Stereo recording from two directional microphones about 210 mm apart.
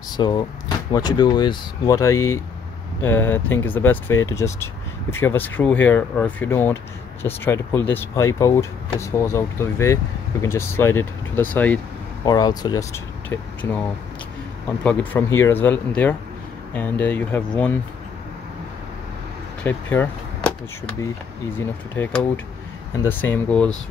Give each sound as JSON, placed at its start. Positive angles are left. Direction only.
{"t": 0.2, "sound": "speech", "side_deg": 20}
{"t": 12.3, "sound": "speech", "side_deg": 20}
{"t": 19.6, "sound": "speech", "side_deg": 10}
{"t": 21.5, "sound": "speech", "side_deg": 10}